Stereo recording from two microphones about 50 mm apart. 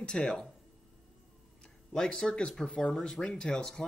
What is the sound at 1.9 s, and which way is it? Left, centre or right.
Speech, centre.